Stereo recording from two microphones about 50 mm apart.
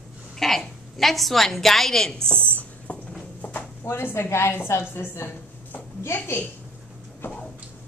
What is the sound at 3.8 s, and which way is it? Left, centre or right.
A woman's voice, left.